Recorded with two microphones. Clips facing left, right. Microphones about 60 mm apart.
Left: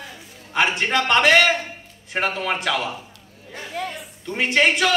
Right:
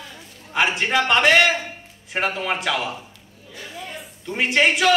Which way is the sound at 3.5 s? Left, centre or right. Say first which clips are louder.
Left 3 dB; left.